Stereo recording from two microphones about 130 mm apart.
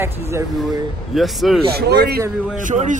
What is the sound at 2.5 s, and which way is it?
Speech, 80° right.